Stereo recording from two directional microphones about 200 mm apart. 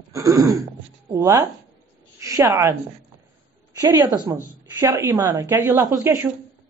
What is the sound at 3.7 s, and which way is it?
A woman's voice, 15° right (ahead or behind).